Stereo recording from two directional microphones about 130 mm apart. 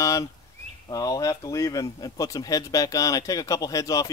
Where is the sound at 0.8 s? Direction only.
30° left (ahead or behind).